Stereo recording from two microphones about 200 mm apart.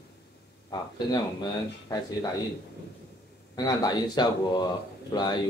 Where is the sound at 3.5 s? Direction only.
20° left (ahead or behind).